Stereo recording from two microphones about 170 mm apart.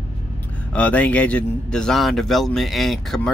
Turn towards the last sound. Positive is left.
turn(degrees=0)  # may be behind; listen again after turning